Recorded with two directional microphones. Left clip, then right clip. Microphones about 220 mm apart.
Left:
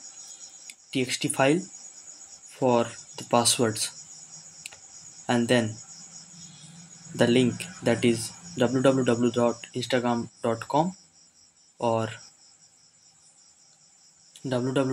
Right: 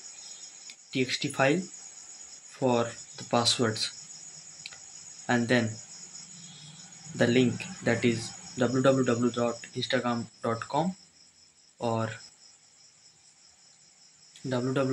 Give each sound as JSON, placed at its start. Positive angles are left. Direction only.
{"t": 0.7, "sound": "speech", "side_deg": 35}
{"t": 4.6, "sound": "cricket", "side_deg": 35}
{"t": 5.2, "sound": "speech", "side_deg": 35}
{"t": 7.2, "sound": "speech", "side_deg": 35}
{"t": 14.5, "sound": "speech", "side_deg": 30}